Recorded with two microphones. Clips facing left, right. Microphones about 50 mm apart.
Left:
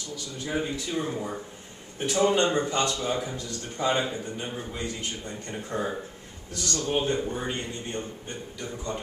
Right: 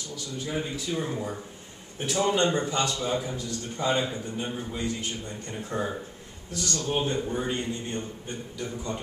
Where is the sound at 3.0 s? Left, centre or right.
Centre.